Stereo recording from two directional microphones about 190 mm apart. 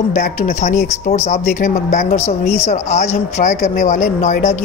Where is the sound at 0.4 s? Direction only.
35° left (ahead or behind).